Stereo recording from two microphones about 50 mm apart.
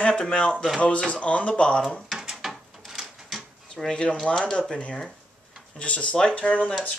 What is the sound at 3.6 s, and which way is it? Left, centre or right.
Speech, centre.